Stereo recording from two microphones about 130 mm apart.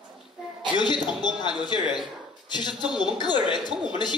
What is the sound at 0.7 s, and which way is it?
A man's voice, 35° left (ahead or behind).